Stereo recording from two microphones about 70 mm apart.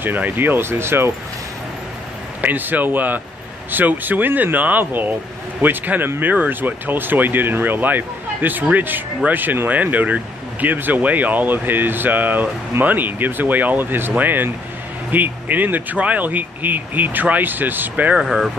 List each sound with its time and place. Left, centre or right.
0.0 s speech: right
2.4 s speech: right
18.2 s speech: centre